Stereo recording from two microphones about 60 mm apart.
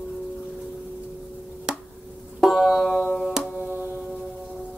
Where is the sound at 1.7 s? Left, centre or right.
Centre.